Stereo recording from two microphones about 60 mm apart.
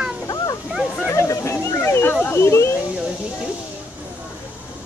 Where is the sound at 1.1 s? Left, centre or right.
Left.